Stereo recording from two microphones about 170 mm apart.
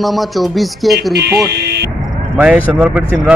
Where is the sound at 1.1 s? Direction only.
80° right.